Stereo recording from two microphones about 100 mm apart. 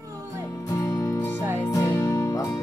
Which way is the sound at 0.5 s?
35° left (ahead or behind).